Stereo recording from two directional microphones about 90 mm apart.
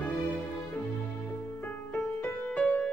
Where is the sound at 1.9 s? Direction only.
10° left (ahead or behind).